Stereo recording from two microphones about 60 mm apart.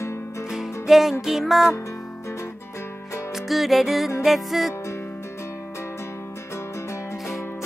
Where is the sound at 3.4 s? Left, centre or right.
Centre.